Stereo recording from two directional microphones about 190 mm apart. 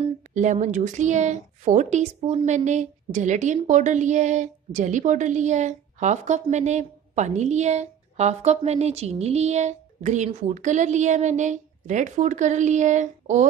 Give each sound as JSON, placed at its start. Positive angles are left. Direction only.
{"t": 0.0, "sound": "a woman's voice", "side_deg": -40}